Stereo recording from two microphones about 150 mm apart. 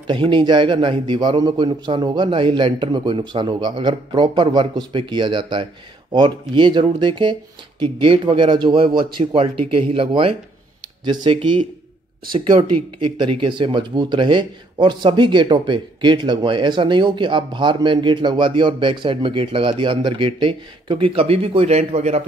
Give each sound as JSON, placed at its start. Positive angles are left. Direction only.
{"t": 0.0, "sound": "speech", "side_deg": -35}